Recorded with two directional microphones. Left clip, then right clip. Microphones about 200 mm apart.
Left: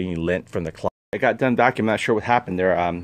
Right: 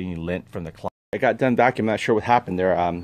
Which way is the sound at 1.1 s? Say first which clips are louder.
Even; 5° right (ahead or behind).